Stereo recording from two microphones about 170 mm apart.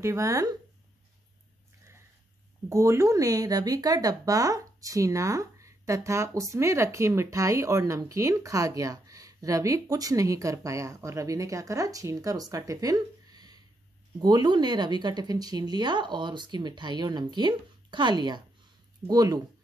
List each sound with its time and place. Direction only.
0.0 s speech: 20° right (ahead or behind)
2.7 s speech: 15° right (ahead or behind)